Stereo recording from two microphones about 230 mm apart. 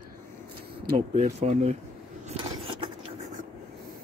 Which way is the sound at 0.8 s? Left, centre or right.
Right.